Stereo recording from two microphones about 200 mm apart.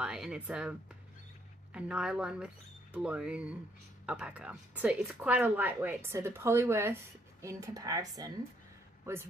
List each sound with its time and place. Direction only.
0.0 s speech: 5° right (ahead or behind)